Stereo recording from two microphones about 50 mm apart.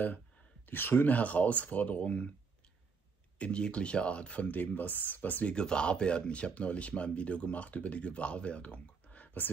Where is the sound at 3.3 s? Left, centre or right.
Left.